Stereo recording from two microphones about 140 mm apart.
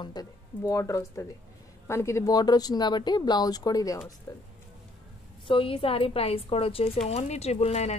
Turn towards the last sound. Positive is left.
turn(degrees=50)  # may be behind; listen again after turning